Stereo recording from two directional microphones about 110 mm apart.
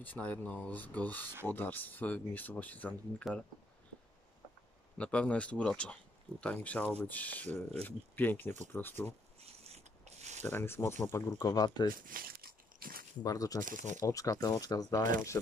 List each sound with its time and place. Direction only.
0.0 s speech: 15° left (ahead or behind)
3.3 s speech: centre (ahead or behind)
4.9 s speech: 10° left (ahead or behind)
9.4 s a sound: 70° right (ahead or behind); by 10.4 s 90° right
10.4 s speech: 20° left (ahead or behind); by 11.9 s 35° left (ahead or behind)
13.2 s speech: 30° left (ahead or behind)